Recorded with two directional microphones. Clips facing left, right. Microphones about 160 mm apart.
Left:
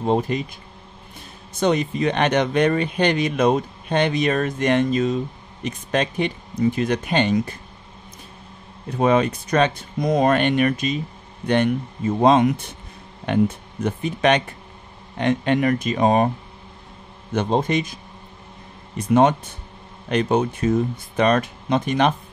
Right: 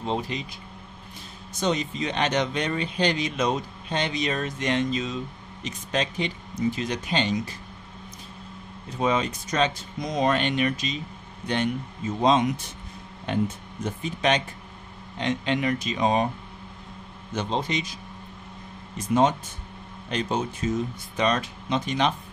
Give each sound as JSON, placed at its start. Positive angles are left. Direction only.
{"t": 0.0, "sound": "speech", "side_deg": 50}
{"t": 8.8, "sound": "speech", "side_deg": 60}
{"t": 17.3, "sound": "speech", "side_deg": 55}
{"t": 18.9, "sound": "speech", "side_deg": 60}